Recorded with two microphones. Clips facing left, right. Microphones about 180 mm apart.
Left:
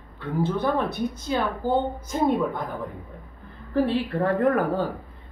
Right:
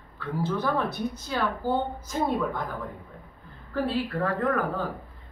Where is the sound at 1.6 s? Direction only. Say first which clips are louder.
Left 4 dB; 10° right (ahead or behind).